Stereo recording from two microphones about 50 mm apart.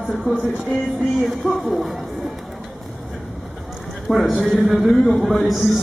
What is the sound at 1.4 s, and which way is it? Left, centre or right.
Speech, centre.